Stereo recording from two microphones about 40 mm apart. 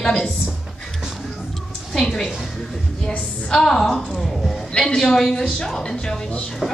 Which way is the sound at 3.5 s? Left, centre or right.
Centre.